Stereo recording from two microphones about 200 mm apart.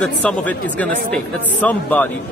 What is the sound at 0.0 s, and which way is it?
Speech, 5° left (ahead or behind).